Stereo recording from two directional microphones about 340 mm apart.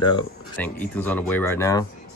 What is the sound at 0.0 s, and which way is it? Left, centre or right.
Speech, centre.